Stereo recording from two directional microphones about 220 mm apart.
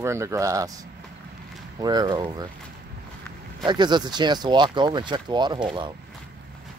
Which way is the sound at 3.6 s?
20° right (ahead or behind).